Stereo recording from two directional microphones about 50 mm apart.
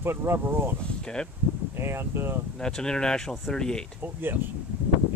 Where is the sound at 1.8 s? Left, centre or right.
Right.